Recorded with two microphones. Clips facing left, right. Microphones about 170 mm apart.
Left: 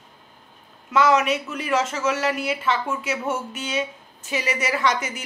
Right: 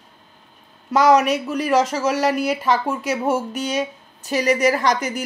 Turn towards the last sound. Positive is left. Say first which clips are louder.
# right 3 dB
turn(degrees=-40)  # may be behind; listen again after turning